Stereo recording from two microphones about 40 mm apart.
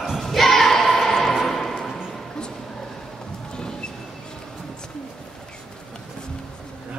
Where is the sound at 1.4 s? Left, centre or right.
Centre.